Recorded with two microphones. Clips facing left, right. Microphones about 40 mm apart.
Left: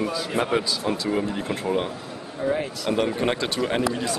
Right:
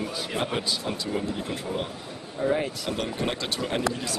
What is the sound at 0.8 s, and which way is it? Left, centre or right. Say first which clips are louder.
Speech: left 5 dB; left.